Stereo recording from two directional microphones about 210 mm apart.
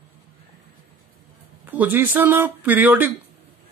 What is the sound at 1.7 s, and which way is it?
A woman's voice, 10° right (ahead or behind).